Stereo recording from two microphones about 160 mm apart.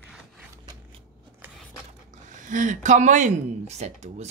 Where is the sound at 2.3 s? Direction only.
50° right (ahead or behind).